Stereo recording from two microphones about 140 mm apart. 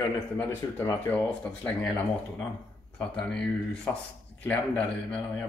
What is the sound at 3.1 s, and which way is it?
Speech, 5° left (ahead or behind).